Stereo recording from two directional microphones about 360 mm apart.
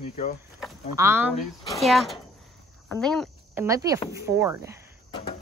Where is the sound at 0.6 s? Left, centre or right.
Centre.